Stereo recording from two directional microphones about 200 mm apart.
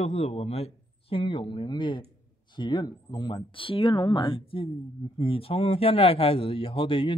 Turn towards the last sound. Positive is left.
turn(degrees=25)  # may be behind; listen again after turning